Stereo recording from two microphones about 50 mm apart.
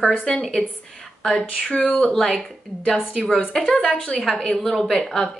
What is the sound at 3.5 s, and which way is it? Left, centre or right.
Speech, centre.